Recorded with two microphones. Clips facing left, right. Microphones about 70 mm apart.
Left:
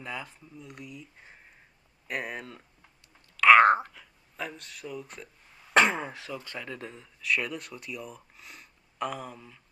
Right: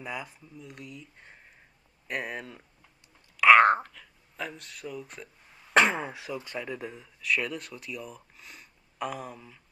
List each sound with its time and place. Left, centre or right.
0.0 s speech: centre
3.3 s a sound: centre
6.3 s speech: centre
6.7 s speech: centre